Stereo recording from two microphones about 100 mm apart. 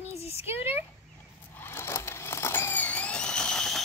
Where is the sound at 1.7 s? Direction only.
25° left (ahead or behind).